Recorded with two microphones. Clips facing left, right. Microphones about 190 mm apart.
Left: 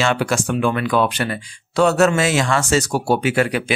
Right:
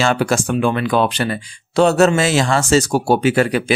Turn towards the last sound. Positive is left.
turn(degrees=-35)  # may be behind; listen again after turning